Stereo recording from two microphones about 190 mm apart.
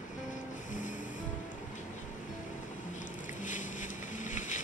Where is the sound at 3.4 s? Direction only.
40° left (ahead or behind).